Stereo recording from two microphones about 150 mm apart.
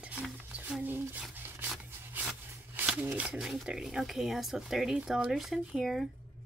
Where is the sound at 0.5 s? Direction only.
10° right (ahead or behind).